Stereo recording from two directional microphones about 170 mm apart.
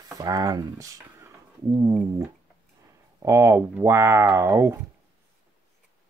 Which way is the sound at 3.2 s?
15° right (ahead or behind).